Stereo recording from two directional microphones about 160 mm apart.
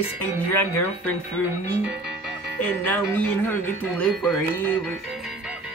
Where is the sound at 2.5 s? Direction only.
10° left (ahead or behind).